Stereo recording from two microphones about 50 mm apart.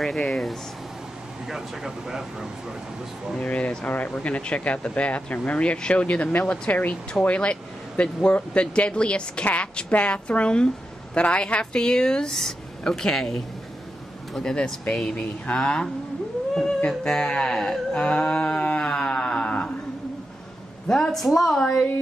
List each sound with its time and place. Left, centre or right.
0.0 s speech: centre
1.5 s speech: centre
3.3 s speech: left; by 13.4 s centre
14.7 s speech: centre
15.1 s speech: left
15.6 s speech: centre
20.9 s speech: centre